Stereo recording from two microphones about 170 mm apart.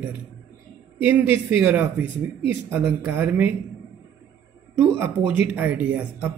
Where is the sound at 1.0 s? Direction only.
10° right (ahead or behind).